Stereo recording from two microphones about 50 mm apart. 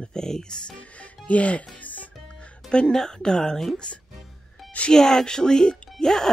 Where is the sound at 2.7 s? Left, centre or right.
Centre.